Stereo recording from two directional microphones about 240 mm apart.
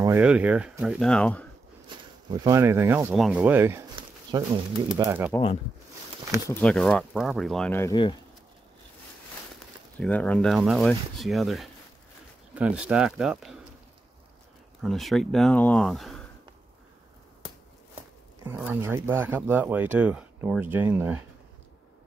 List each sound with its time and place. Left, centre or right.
0.0 s speech: centre
2.3 s speech: centre
3.9 s a sound: centre
4.9 s speech: centre
6.5 s speech: centre
9.9 s speech: centre
14.8 s speech: centre
18.4 s speech: centre